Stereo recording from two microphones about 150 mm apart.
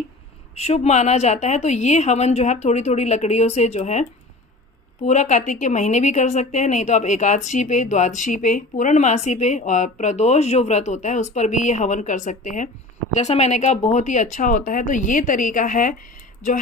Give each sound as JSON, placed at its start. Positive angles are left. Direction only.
{"t": 0.6, "sound": "a woman's voice", "side_deg": 45}